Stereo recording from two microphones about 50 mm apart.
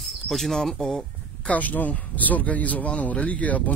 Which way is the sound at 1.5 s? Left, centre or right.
Left.